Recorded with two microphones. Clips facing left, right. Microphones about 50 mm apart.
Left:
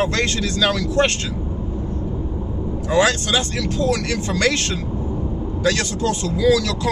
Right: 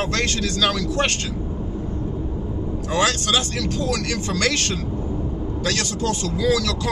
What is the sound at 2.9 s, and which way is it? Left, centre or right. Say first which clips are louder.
Speech: left 3 dB; left.